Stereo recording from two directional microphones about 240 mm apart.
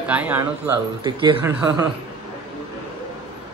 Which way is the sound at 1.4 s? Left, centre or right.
Centre.